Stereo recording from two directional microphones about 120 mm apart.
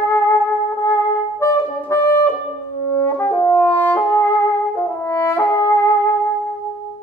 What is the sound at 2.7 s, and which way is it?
French horn, 20° left (ahead or behind).